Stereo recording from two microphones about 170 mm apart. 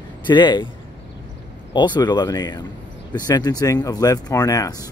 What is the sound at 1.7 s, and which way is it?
Speech, 25° left (ahead or behind).